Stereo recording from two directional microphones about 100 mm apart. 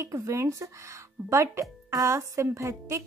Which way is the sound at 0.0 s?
30° right (ahead or behind).